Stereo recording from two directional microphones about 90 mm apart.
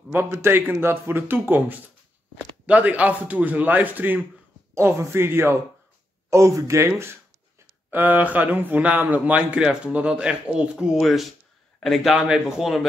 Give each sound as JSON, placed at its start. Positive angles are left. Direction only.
{"t": 0.1, "sound": "speech", "side_deg": -20}
{"t": 7.9, "sound": "speech", "side_deg": -20}